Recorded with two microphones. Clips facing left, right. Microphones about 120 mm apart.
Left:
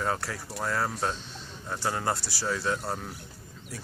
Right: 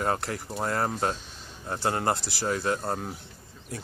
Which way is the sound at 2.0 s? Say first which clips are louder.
Right 3 dB; 50° right (ahead or behind).